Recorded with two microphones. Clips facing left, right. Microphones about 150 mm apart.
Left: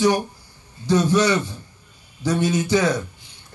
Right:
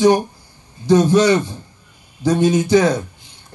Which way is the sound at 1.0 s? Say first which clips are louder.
Right 5 dB; 15° right (ahead or behind).